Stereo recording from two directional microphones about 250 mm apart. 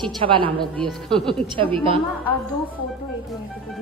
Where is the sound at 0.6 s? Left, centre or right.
Centre.